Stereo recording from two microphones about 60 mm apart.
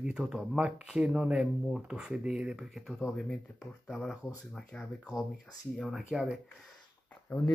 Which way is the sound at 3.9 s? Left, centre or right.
Centre.